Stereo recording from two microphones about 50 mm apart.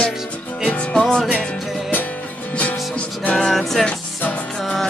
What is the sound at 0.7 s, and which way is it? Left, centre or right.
Music, left.